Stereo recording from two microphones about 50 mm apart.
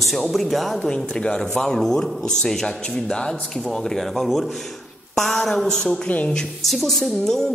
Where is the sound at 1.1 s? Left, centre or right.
Centre.